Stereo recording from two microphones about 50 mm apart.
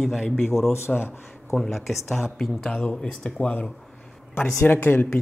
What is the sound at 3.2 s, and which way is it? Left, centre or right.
A woman's voice, left.